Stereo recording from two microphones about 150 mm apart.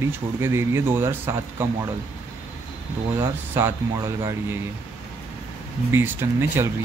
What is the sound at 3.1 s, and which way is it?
Speech, 15° right (ahead or behind).